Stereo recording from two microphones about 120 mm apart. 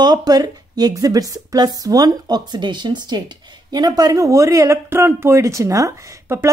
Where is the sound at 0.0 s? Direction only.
35° right (ahead or behind).